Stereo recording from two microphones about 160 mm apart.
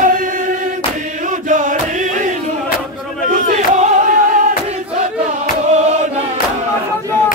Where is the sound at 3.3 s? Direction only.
55° right (ahead or behind).